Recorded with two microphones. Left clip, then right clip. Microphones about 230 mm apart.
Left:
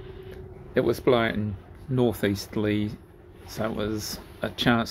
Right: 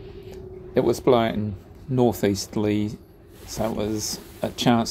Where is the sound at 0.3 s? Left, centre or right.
Centre.